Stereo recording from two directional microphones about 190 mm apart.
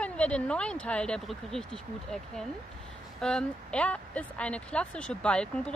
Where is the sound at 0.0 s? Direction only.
5° left (ahead or behind).